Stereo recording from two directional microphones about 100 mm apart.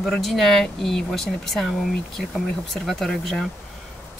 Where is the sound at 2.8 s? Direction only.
5° left (ahead or behind).